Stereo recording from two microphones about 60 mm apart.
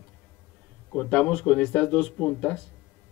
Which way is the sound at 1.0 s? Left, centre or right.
Centre.